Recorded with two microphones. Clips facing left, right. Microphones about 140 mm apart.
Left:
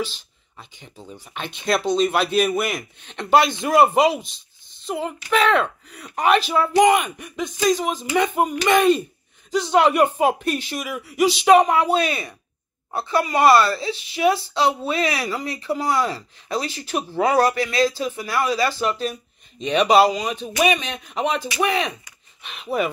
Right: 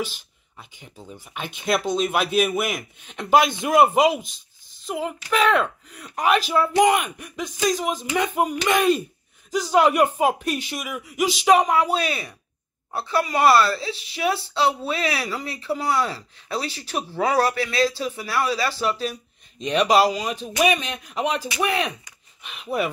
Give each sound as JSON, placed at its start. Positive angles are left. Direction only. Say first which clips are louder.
{"t": 0.0, "sound": "speech", "louder": "left 1 dB", "side_deg": -10}
{"t": 4.2, "sound": "a sound", "louder": "left 1 dB", "side_deg": -45}
{"t": 4.8, "sound": "speech", "louder": "left 1 dB", "side_deg": 0}